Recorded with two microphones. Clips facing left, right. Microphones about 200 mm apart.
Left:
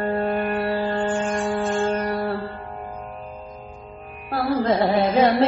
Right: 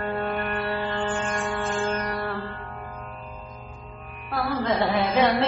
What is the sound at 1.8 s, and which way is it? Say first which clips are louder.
Music: left 5 dB; 35° left (ahead or behind).